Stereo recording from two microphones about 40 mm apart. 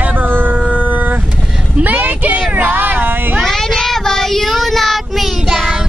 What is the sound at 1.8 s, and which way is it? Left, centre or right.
Speech, right.